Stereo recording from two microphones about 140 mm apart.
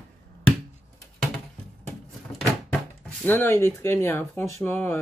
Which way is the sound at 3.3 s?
15° left (ahead or behind).